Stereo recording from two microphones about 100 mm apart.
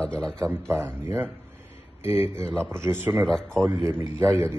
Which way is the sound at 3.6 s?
25° right (ahead or behind).